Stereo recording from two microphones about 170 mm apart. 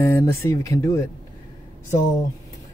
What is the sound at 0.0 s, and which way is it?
Speech, 15° left (ahead or behind).